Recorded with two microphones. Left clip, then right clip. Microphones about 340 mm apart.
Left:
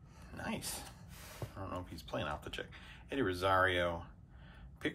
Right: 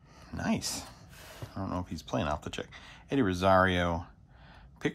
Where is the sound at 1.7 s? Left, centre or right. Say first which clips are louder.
Right 7 dB; centre.